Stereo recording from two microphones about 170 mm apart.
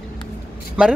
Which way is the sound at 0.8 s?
5° right (ahead or behind).